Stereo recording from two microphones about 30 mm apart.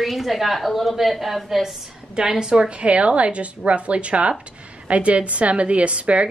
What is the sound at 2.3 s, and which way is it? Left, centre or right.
Speech, right.